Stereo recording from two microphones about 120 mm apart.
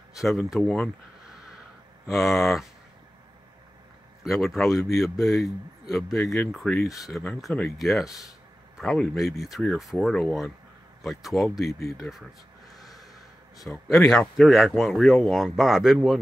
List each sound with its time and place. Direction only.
0.2 s a man's voice: centre (ahead or behind)
2.0 s a man's voice: centre (ahead or behind)
4.2 s a man's voice: centre (ahead or behind)
12.7 s gasp: centre (ahead or behind)
13.6 s a man's voice: centre (ahead or behind)